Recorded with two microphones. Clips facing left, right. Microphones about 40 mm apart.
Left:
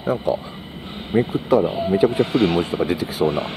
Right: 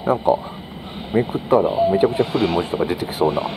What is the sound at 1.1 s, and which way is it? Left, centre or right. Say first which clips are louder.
Speech: even; left.